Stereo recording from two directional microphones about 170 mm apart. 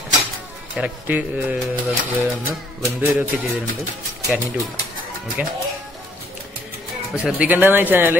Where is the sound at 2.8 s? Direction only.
15° right (ahead or behind).